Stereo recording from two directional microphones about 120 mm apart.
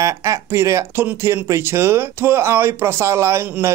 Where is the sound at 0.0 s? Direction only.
25° right (ahead or behind).